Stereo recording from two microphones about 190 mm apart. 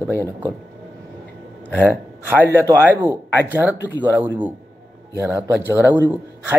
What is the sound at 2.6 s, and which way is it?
A man's voice, 15° right (ahead or behind).